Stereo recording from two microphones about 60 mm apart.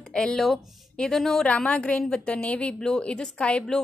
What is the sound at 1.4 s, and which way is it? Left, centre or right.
A woman's voice, left.